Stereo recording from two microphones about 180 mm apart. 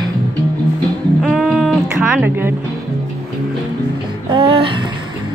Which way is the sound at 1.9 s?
10° right (ahead or behind).